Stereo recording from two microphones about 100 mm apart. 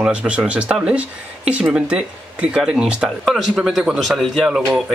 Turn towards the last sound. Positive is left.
turn(degrees=0)  # may be behind; listen again after turning